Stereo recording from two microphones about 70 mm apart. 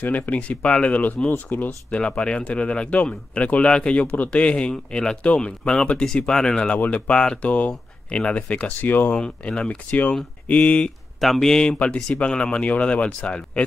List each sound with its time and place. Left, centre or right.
0.0 s speech: left
1.9 s speech: centre
9.1 s speech: centre
11.1 s speech: centre